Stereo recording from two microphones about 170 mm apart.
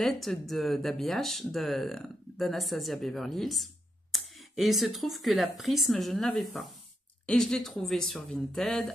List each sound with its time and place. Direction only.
0.0 s speech: centre (ahead or behind)